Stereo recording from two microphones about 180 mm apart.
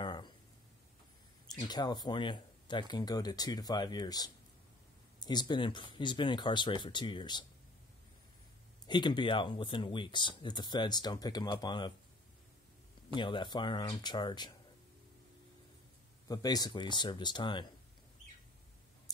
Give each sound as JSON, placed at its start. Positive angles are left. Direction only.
{"t": 0.0, "sound": "a sound", "side_deg": 25}
{"t": 1.5, "sound": "speech", "side_deg": 20}
{"t": 8.8, "sound": "speech", "side_deg": 25}
{"t": 13.1, "sound": "speech", "side_deg": 25}
{"t": 16.3, "sound": "speech", "side_deg": 20}